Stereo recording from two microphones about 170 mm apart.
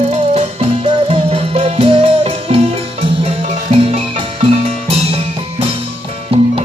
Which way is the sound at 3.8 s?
35° right (ahead or behind).